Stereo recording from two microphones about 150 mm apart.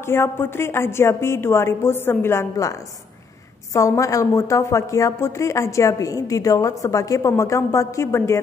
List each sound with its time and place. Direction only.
0.0 s a woman's voice: 15° left (ahead or behind)